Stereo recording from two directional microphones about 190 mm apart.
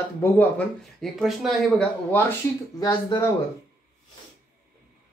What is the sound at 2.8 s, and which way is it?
Speech, 25° left (ahead or behind).